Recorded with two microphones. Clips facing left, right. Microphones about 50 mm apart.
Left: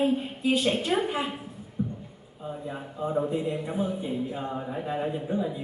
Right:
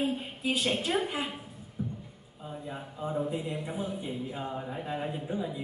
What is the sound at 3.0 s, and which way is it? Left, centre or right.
Speech, centre.